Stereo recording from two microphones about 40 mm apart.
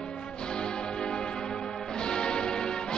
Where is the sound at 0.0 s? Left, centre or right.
Left.